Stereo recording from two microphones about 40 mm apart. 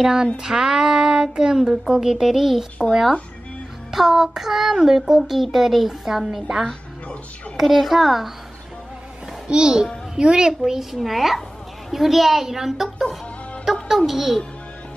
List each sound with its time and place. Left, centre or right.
0.0 s speech: centre
7.5 s a child's voice: centre
9.5 s a child's voice: centre